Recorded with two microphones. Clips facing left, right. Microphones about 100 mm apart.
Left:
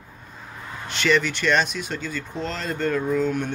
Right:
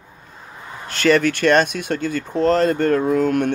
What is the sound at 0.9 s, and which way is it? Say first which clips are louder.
Speech: right 6 dB; 45° right (ahead or behind).